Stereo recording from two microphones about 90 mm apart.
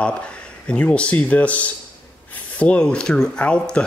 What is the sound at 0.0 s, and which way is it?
Speech, 10° left (ahead or behind).